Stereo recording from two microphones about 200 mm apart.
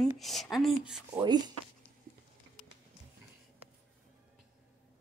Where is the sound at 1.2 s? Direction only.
20° right (ahead or behind).